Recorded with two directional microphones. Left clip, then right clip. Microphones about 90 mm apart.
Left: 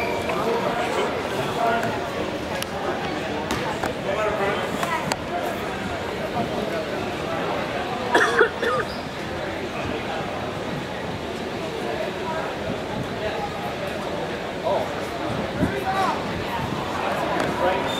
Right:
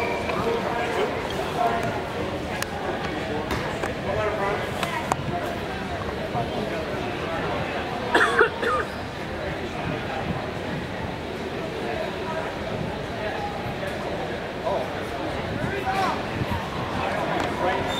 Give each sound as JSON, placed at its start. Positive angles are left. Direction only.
{"t": 8.1, "sound": "cough", "side_deg": 20}